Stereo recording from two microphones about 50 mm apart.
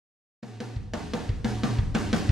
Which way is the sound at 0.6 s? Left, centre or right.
Centre.